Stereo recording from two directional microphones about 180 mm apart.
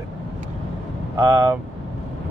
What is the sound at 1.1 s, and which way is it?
Speech, 15° right (ahead or behind).